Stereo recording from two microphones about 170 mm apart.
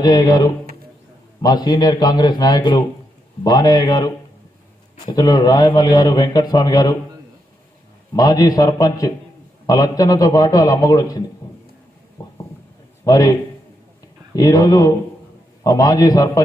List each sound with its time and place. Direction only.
0.0 s a man's voice: 25° left (ahead or behind)
8.1 s a man's voice: 20° left (ahead or behind)
13.0 s a man's voice: 20° left (ahead or behind)